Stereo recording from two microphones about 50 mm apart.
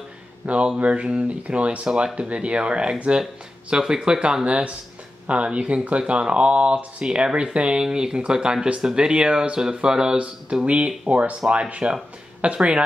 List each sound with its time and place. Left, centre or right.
0.5 s speech: right
11.4 s speech: centre